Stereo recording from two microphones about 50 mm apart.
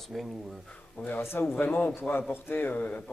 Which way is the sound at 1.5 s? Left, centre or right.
Left.